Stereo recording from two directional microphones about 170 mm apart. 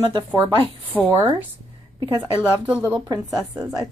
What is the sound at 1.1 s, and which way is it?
Speech, 20° right (ahead or behind).